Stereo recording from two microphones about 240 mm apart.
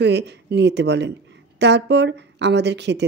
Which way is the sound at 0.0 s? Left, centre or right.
Right.